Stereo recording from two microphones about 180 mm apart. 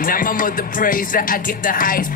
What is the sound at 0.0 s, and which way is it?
Music, 50° left (ahead or behind).